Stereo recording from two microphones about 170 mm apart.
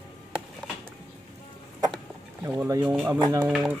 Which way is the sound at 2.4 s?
15° right (ahead or behind).